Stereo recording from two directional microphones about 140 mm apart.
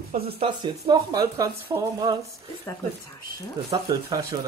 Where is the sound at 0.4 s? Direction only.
30° right (ahead or behind).